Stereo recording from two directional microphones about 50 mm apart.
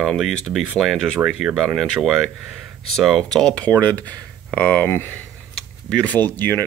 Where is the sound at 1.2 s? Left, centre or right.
Right.